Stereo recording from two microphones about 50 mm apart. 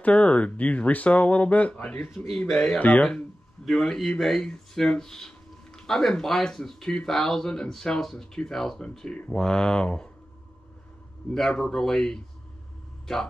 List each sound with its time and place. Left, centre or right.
0.0 s speech: left
2.4 s speech: centre
11.3 s speech: centre